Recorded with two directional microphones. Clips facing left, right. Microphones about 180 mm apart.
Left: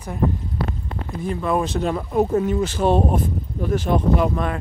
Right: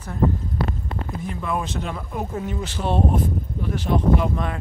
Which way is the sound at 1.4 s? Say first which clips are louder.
Left 6 dB; 35° left (ahead or behind).